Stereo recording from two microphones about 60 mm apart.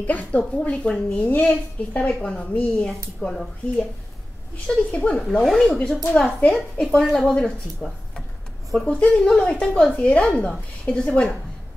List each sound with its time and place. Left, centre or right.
0.0 s a woman's voice: left
5.4 s speech: centre
6.1 s speech: centre